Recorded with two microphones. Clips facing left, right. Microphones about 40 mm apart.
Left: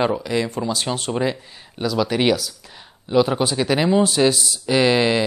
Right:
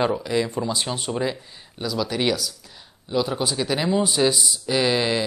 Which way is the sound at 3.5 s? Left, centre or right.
Left.